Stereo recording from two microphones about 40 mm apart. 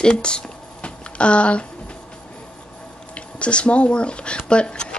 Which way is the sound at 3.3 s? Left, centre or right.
Left.